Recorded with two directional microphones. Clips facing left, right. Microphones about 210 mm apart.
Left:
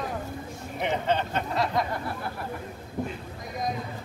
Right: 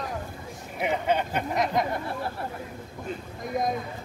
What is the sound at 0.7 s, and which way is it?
Speech, 10° right (ahead or behind).